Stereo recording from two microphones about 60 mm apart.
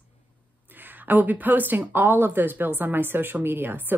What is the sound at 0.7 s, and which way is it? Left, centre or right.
Speech, right.